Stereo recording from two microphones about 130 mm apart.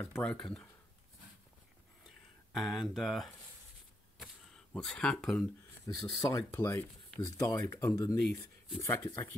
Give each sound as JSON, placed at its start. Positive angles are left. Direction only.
{"t": 0.0, "sound": "speech", "side_deg": 10}
{"t": 2.0, "sound": "a sound", "side_deg": 0}
{"t": 4.2, "sound": "camera", "side_deg": 5}
{"t": 5.9, "sound": "speech", "side_deg": 25}